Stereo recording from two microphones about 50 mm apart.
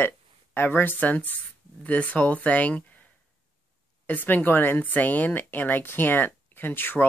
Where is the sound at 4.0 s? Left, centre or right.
Left.